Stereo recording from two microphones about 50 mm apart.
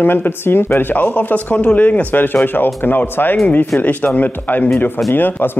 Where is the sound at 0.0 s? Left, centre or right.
Left.